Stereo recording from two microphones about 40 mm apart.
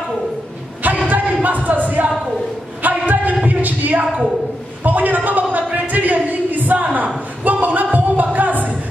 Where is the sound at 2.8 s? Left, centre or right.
Right.